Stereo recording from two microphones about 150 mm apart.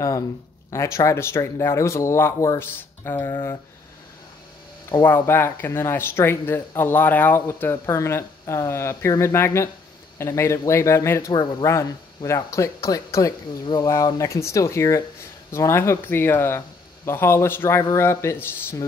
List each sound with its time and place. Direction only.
0.7 s speech: 20° left (ahead or behind)
5.0 s speech: 15° left (ahead or behind)